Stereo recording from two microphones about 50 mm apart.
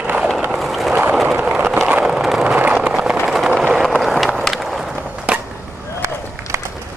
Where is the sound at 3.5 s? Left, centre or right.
Centre.